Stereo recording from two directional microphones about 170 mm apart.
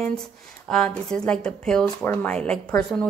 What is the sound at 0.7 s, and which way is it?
A woman's voice, 5° left (ahead or behind).